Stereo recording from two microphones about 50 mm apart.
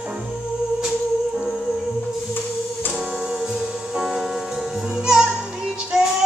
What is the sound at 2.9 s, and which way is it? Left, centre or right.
Music, right.